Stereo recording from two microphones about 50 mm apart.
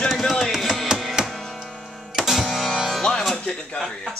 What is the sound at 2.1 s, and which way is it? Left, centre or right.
Music, centre.